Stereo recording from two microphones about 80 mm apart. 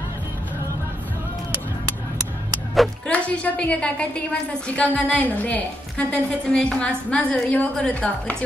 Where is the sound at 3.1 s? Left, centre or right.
Centre.